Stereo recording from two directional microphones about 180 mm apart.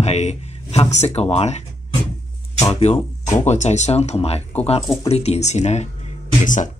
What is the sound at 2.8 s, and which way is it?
Speech, 40° left (ahead or behind).